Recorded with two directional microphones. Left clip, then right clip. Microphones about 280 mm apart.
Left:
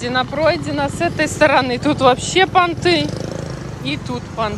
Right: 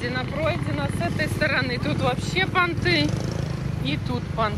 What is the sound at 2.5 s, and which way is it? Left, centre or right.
Speech, centre.